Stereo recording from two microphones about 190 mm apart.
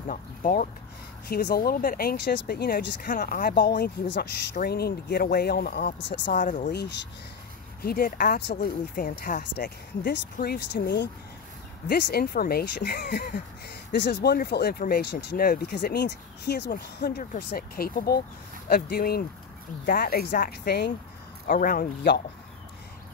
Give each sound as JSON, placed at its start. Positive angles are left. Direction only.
{"t": 0.1, "sound": "speech", "side_deg": 45}
{"t": 6.3, "sound": "speech", "side_deg": 45}
{"t": 6.7, "sound": "speech", "side_deg": 60}
{"t": 7.8, "sound": "speech", "side_deg": 50}
{"t": 13.9, "sound": "speech", "side_deg": 65}